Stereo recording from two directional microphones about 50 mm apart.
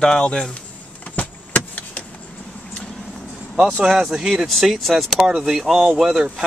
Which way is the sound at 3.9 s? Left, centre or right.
Centre.